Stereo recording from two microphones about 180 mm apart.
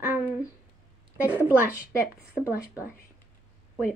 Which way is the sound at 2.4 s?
15° left (ahead or behind).